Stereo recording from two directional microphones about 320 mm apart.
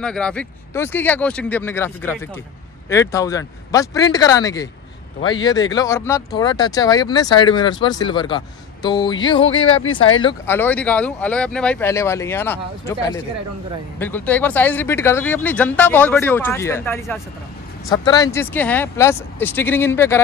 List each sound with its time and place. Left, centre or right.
0.0 s speech: centre